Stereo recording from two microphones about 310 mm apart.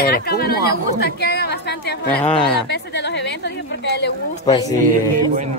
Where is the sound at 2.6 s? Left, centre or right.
Left.